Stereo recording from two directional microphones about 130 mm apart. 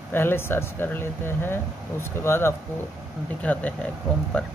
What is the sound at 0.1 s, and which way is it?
Speech, 15° left (ahead or behind).